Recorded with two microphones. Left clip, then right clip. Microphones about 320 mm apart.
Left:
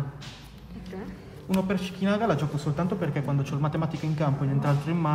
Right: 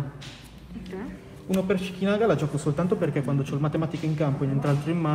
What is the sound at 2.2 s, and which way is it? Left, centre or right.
A man's voice, centre.